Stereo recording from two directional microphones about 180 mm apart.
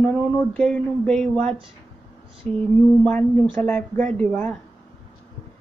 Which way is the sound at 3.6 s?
5° left (ahead or behind).